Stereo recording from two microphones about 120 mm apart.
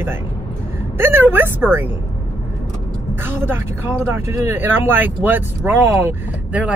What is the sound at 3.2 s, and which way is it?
Speech, 20° right (ahead or behind).